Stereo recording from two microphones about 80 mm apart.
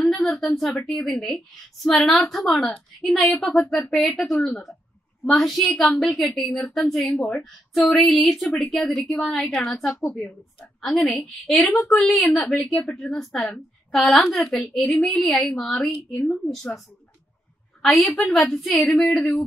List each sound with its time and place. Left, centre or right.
0.0 s a woman's voice: centre
9.5 s a woman's voice: left
11.1 s a woman's voice: centre
18.1 s a woman's voice: centre
18.9 s speech: centre